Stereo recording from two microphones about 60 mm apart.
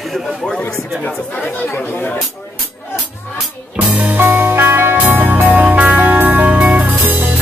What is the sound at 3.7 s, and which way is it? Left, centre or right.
Music, right.